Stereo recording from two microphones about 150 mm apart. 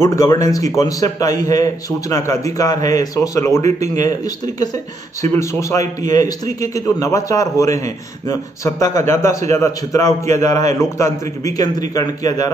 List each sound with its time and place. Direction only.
0.0 s a man's voice: 20° left (ahead or behind)
5.2 s a man's voice: 20° left (ahead or behind)